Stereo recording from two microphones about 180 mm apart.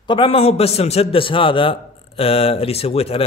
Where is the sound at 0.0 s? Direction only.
30° left (ahead or behind).